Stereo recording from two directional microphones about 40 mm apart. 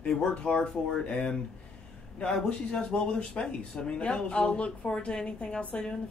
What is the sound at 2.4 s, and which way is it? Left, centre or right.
Speech, left.